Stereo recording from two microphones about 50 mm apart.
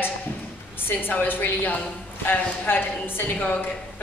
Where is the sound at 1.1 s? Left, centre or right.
Left.